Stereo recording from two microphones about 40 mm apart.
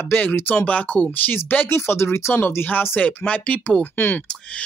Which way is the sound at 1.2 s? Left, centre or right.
Left.